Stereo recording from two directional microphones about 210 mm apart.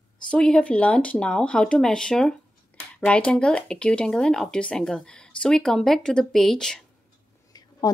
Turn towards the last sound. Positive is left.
turn(degrees=20)  # may be behind; listen again after turning